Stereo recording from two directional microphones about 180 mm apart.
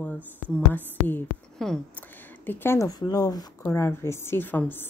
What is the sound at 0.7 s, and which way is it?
Speech, 10° left (ahead or behind).